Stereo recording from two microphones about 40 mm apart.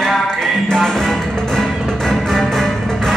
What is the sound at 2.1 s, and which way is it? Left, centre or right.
Music, centre.